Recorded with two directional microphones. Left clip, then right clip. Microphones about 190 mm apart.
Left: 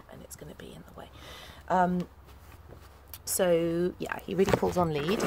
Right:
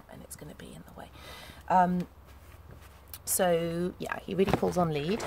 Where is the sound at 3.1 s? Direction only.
Centre (ahead or behind).